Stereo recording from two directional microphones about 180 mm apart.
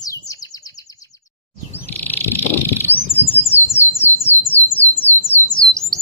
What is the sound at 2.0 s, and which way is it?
Bird, 10° left (ahead or behind).